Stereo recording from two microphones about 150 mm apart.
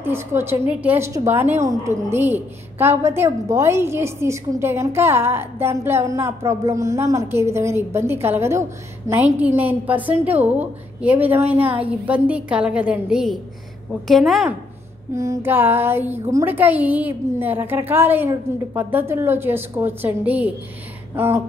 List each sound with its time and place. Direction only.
0.0 s a woman's voice: 15° right (ahead or behind)
15.1 s a woman's voice: 15° right (ahead or behind)